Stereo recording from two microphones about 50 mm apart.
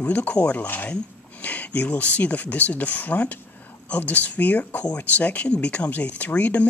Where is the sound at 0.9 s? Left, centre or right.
Left.